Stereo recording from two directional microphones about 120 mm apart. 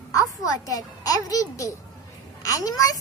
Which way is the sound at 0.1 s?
30° left (ahead or behind).